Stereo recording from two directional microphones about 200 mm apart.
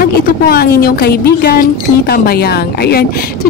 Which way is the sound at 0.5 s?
50° left (ahead or behind).